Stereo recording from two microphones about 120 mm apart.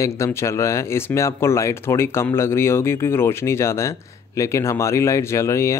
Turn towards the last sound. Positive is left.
turn(degrees=25)  # may be behind; listen again after turning